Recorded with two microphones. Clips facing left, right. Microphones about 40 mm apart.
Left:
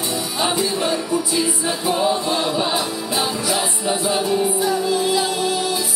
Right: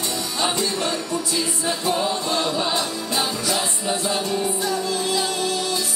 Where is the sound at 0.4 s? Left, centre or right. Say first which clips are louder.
Left 3 dB; centre.